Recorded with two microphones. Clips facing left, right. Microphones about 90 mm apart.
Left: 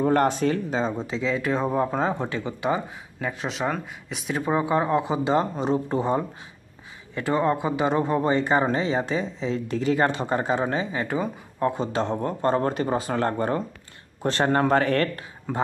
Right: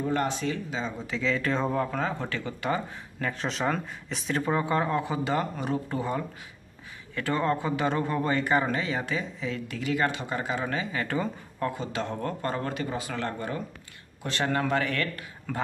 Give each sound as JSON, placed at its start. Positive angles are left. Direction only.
{"t": 0.0, "sound": "speech", "side_deg": 50}
{"t": 1.0, "sound": "speech", "side_deg": 20}
{"t": 1.8, "sound": "speech", "side_deg": 25}
{"t": 11.7, "sound": "speech", "side_deg": 30}
{"t": 15.5, "sound": "speech", "side_deg": 20}